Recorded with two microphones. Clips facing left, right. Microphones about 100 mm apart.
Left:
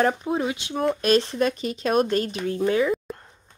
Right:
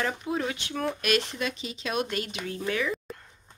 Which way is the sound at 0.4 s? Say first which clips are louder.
Left 5 dB; 20° left (ahead or behind).